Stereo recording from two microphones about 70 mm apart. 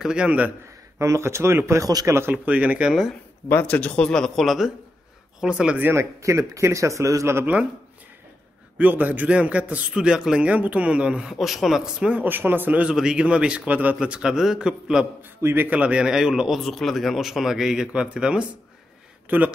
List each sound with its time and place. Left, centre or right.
0.0 s speech: centre
0.9 s speech: right
1.9 s speech: right
2.3 s speech: right
3.6 s speech: centre
4.5 s speech: centre
5.8 s speech: right
6.2 s speech: right
8.7 s speech: right; by 12.1 s centre
12.1 s speech: right
12.8 s speech: centre
15.2 s speech: right
15.7 s speech: centre
16.5 s speech: centre; by 19.5 s right